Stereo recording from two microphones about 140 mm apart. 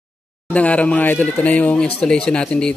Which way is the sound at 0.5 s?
10° left (ahead or behind).